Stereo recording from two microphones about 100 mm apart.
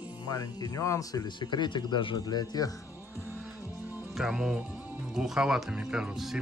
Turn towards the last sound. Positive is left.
turn(degrees=-5)  # may be behind; listen again after turning